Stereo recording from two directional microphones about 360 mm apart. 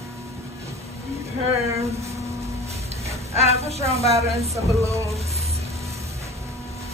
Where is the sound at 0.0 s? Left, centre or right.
Centre.